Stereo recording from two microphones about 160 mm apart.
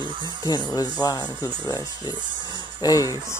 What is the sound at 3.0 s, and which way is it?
Speech, 25° right (ahead or behind).